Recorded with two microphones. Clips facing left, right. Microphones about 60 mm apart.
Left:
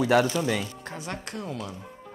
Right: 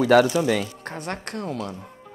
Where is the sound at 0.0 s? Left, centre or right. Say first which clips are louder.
Right 5 dB; right.